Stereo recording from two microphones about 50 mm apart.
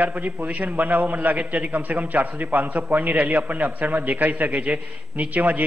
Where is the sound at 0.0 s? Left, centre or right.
Right.